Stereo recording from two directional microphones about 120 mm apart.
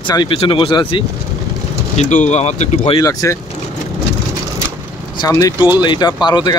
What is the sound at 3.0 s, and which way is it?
Speech, 30° left (ahead or behind).